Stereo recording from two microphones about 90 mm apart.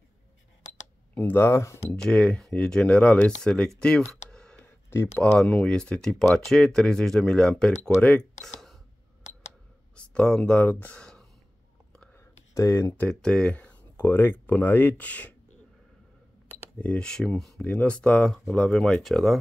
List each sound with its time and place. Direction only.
1.1 s speech: 20° left (ahead or behind)
2.0 s speech: 10° left (ahead or behind)
3.8 s a sound: 5° left (ahead or behind)
4.8 s a sound: 30° left (ahead or behind)
5.4 s speech: 5° left (ahead or behind)
9.9 s speech: 10° left (ahead or behind)
12.5 s speech: 35° left (ahead or behind)
13.2 s speech: 10° left (ahead or behind)
16.8 s speech: 10° left (ahead or behind)